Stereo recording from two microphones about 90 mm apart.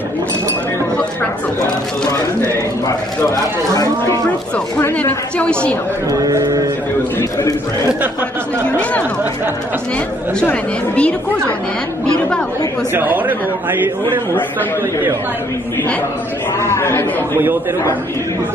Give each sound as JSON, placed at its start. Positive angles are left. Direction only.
{"t": 2.9, "sound": "speech", "side_deg": 35}
{"t": 4.9, "sound": "speech", "side_deg": 15}
{"t": 6.0, "sound": "speech", "side_deg": -40}
{"t": 8.6, "sound": "speech", "side_deg": 15}
{"t": 10.5, "sound": "speech", "side_deg": 15}
{"t": 12.9, "sound": "a man's voice", "side_deg": -20}
{"t": 16.6, "sound": "a man's voice", "side_deg": 30}